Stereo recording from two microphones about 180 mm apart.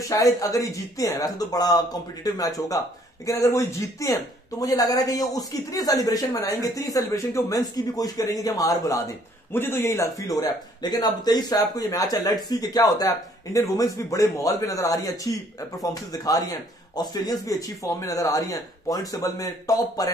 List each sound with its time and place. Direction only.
0.1 s speech: 20° left (ahead or behind)